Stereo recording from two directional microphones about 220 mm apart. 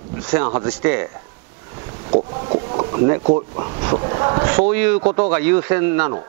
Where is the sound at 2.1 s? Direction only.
30° right (ahead or behind).